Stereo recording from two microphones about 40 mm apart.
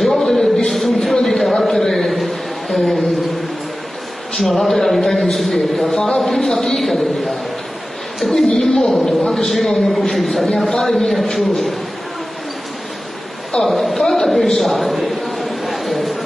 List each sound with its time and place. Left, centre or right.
0.0 s a sound: centre
4.3 s a man's voice: centre
5.9 s speech: centre
6.2 s a man's voice: centre
6.6 s a sound: centre
8.3 s a man's voice: centre
10.7 s speech: centre
11.1 s a man's voice: centre
13.5 s a sound: centre